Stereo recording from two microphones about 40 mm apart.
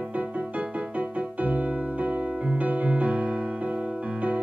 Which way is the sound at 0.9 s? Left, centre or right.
Right.